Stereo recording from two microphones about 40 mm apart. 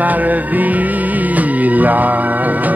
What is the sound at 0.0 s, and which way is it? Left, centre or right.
Music, right.